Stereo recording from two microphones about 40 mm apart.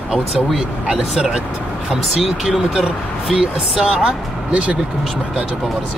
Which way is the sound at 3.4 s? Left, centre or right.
Right.